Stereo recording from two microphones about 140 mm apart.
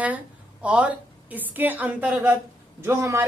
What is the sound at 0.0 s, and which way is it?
A woman's voice, 10° right (ahead or behind).